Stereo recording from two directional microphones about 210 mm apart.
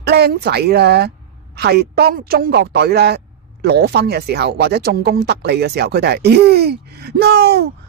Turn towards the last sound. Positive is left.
turn(degrees=-50)  # may be behind; listen again after turning